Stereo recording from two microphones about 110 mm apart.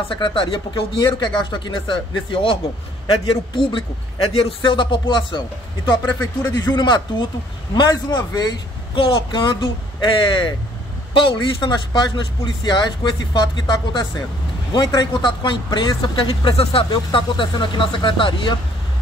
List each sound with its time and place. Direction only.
0.1 s speech: 50° left (ahead or behind)
6.1 s speech: 15° left (ahead or behind)
6.8 s a man's voice: 45° left (ahead or behind)
8.9 s speech: 50° left (ahead or behind)
16.3 s speech: 60° left (ahead or behind)